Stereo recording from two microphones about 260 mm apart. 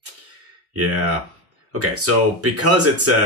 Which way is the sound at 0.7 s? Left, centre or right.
Right.